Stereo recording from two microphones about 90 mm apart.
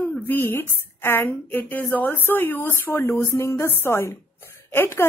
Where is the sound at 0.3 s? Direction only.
25° left (ahead or behind).